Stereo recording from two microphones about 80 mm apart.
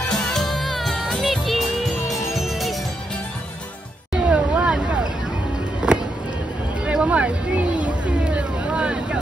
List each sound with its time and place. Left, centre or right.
0.1 s music: centre
4.3 s vehicle: centre
5.8 s music: centre
6.9 s a sound: centre
8.4 s vehicle: centre